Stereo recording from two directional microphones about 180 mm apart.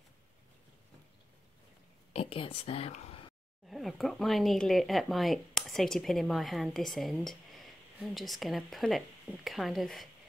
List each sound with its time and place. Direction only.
2.1 s speech: 30° left (ahead or behind)
3.6 s speech: centre (ahead or behind)